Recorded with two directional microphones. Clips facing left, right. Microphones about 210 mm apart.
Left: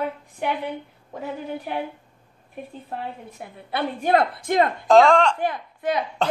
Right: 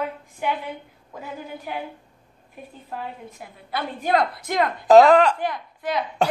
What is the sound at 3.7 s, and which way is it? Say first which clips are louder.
Speech: left 2 dB; 25° left (ahead or behind).